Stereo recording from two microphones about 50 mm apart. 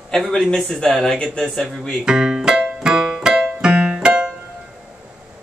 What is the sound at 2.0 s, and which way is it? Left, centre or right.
Keyboard, centre.